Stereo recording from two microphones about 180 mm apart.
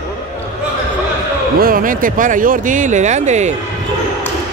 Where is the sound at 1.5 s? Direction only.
50° right (ahead or behind).